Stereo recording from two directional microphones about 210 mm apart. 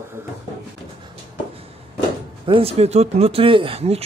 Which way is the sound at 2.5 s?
30° right (ahead or behind).